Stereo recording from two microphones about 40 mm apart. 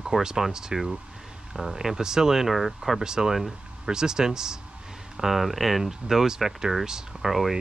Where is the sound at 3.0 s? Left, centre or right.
Centre.